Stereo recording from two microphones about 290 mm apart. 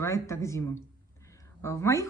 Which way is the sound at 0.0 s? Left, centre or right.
Centre.